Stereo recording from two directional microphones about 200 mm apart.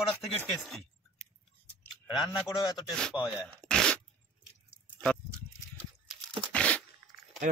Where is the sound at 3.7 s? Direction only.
5° left (ahead or behind).